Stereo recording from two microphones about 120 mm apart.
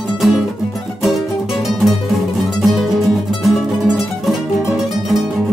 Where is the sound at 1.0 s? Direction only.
Centre (ahead or behind).